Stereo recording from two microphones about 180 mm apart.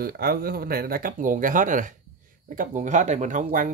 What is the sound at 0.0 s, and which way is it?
Speech, 55° right (ahead or behind).